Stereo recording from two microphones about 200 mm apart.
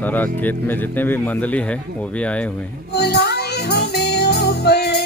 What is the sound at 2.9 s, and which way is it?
Music, 55° left (ahead or behind).